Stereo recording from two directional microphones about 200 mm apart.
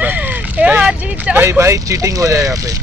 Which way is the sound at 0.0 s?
10° right (ahead or behind).